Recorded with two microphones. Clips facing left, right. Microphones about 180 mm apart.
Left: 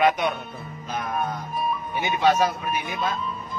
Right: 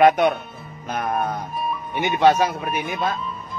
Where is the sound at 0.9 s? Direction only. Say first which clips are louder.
Right 5 dB; 60° right (ahead or behind).